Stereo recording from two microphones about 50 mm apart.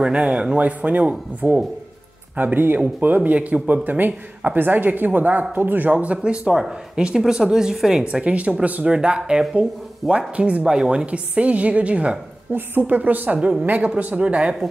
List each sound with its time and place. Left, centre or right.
0.0 s speech: right
3.3 s speech: right
5.9 s speech: right
11.1 s speech: right
12.5 s speech: right; by 14.6 s centre